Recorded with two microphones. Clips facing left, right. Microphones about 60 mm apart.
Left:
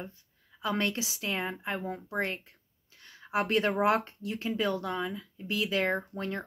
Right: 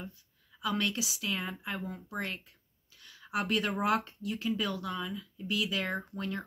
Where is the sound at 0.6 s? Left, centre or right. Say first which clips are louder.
Left 2 dB; left.